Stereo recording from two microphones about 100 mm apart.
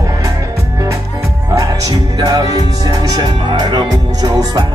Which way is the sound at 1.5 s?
35° right (ahead or behind).